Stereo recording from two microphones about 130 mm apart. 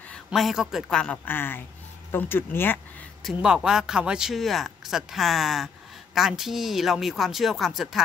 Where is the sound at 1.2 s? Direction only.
15° left (ahead or behind).